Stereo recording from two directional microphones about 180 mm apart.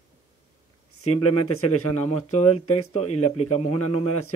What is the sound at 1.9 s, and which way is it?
Speech, 35° left (ahead or behind).